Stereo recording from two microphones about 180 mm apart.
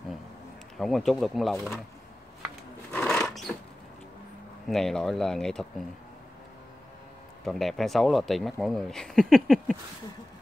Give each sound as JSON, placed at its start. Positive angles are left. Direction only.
{"t": 0.7, "sound": "speech", "side_deg": 0}
{"t": 2.9, "sound": "sewing machine", "side_deg": 5}
{"t": 4.6, "sound": "speech", "side_deg": 0}
{"t": 7.4, "sound": "speech", "side_deg": 0}